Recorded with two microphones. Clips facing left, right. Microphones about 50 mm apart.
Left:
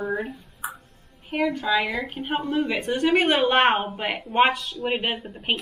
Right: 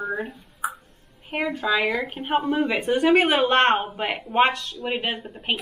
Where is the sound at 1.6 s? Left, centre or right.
Centre.